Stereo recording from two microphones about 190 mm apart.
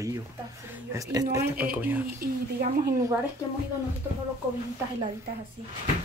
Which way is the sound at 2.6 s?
45° right (ahead or behind).